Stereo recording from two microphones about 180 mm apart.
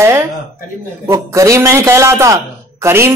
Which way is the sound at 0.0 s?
15° right (ahead or behind).